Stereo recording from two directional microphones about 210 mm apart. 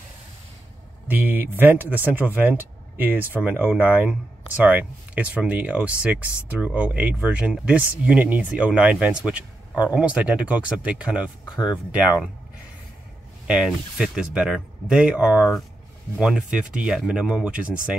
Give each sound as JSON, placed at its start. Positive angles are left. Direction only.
{"t": 1.0, "sound": "speech", "side_deg": -10}
{"t": 13.5, "sound": "speech", "side_deg": -5}